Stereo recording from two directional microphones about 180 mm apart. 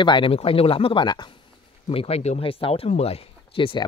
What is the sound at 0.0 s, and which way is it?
Speech, 25° left (ahead or behind).